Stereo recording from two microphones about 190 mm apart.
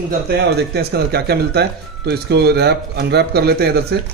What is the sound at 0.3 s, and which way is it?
Speech, 60° right (ahead or behind).